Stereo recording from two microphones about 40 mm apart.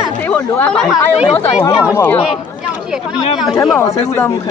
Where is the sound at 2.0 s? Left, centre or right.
Left.